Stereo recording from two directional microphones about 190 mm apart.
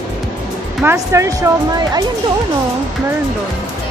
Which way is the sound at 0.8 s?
15° right (ahead or behind).